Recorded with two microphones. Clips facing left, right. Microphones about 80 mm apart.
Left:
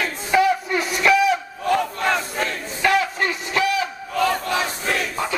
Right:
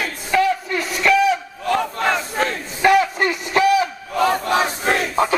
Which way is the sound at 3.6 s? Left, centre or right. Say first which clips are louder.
Right 6 dB; centre.